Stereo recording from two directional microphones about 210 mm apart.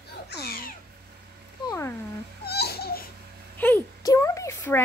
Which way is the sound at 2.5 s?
50° left (ahead or behind).